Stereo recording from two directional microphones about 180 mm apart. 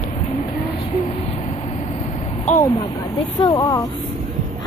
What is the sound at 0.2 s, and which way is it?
Vehicle, 40° left (ahead or behind).